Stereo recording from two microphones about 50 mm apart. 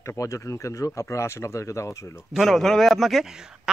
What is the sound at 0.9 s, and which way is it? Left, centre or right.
Speech, left.